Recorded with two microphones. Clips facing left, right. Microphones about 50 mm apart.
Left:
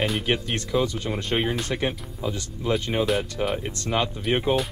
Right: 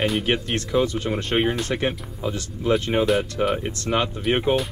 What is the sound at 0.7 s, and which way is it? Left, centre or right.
Speech, centre.